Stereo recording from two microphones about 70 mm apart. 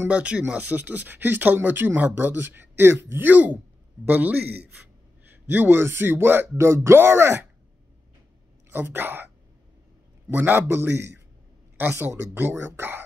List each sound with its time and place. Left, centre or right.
0.1 s speech: centre; by 7.4 s right
8.6 s speech: right
10.3 s speech: right